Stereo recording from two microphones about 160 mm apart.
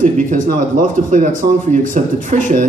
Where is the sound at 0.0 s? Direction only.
55° right (ahead or behind).